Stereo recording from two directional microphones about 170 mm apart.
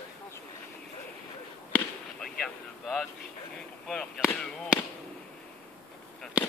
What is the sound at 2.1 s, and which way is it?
Vehicle, 5° left (ahead or behind).